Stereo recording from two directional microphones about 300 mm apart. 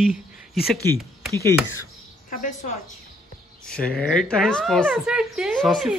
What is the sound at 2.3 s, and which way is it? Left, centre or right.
Speech, left.